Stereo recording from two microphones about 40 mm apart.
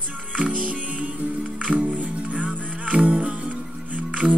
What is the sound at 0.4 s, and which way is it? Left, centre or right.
Music, right.